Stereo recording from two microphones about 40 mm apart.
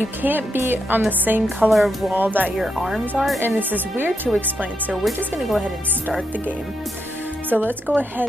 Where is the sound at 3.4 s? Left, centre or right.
Right.